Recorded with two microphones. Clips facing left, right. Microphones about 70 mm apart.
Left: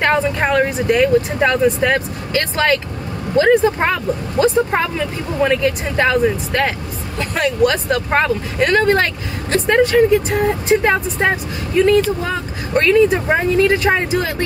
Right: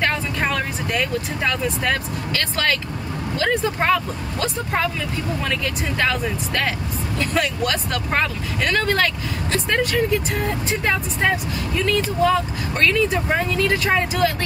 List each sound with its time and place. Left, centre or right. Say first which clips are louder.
0.0 s speech: left 6 dB; left